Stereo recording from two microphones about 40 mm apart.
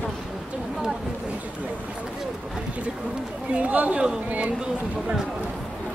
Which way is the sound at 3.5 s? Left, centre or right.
Right.